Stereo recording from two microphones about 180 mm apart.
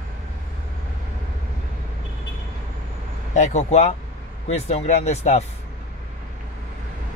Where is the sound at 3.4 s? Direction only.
40° left (ahead or behind).